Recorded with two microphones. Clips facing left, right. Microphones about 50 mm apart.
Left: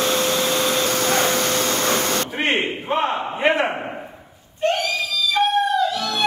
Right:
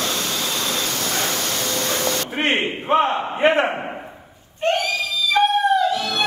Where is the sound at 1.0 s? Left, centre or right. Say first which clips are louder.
Left 5 dB; left.